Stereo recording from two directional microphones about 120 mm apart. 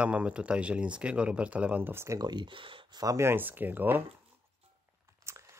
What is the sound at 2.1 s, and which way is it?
Speech, 35° right (ahead or behind).